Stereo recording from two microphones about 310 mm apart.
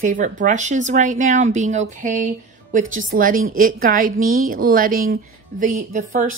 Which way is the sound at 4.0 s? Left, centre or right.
Right.